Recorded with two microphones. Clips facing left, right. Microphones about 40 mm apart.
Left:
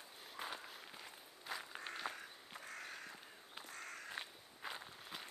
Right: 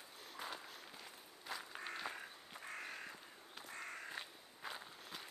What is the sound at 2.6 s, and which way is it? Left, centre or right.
Crow, centre.